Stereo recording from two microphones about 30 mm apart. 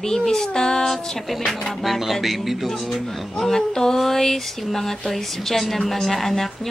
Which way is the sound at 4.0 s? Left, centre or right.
Centre.